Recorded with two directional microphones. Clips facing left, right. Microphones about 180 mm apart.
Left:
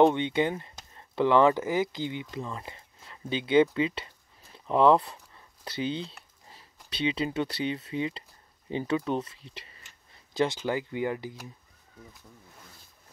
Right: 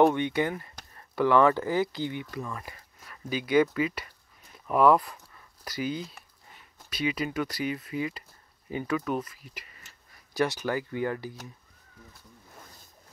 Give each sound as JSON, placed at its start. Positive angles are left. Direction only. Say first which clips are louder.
{"t": 0.0, "sound": "speech", "louder": "left 1 dB", "side_deg": 20}
{"t": 3.7, "sound": "a sound", "louder": "left 1 dB", "side_deg": 25}
{"t": 6.9, "sound": "speech", "louder": "left 1 dB", "side_deg": 25}